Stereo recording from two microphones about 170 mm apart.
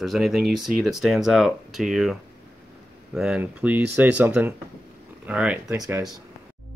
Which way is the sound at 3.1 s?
5° right (ahead or behind).